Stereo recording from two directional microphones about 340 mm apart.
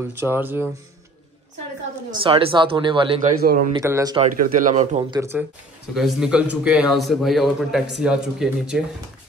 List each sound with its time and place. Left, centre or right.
0.0 s speech: centre
2.0 s speech: centre
3.8 s speech: centre
4.4 s a man's voice: right; by 8.8 s centre